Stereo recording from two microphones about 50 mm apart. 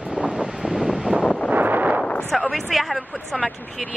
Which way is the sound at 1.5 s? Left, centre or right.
Right.